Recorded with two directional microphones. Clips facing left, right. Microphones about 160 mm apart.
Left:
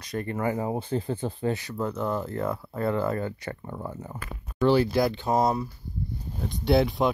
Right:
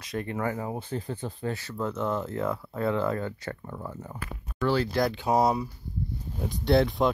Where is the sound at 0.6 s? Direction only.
30° left (ahead or behind).